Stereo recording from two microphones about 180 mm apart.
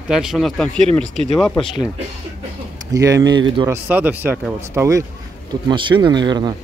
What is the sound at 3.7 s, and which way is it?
Speech, 10° right (ahead or behind).